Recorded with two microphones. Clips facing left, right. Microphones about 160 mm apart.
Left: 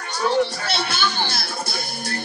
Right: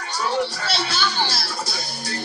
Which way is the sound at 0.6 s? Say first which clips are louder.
Even; 55° left (ahead or behind).